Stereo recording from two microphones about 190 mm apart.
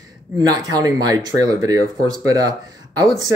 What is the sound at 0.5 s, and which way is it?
Speech, 20° right (ahead or behind).